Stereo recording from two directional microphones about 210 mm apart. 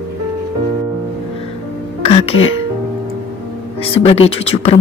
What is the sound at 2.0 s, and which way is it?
Speech, 30° left (ahead or behind).